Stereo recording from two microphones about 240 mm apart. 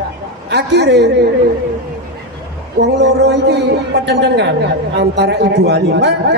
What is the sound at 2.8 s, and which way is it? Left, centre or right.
Speech, right.